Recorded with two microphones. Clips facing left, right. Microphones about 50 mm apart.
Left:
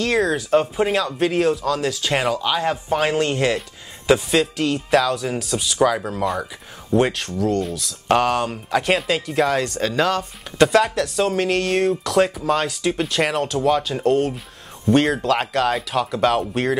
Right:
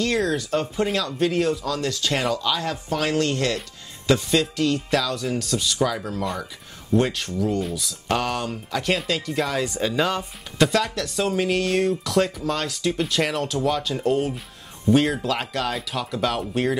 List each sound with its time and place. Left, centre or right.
0.0 s speech: centre
2.3 s speech: left
6.9 s speech: centre
7.2 s speech: centre
8.5 s speech: left
9.6 s speech: centre
14.0 s speech: centre